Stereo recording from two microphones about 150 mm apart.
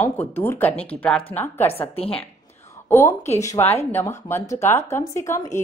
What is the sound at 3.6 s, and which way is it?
Speech, 45° left (ahead or behind).